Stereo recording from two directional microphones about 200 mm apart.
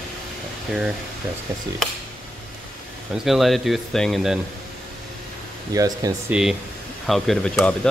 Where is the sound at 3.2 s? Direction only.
Centre (ahead or behind).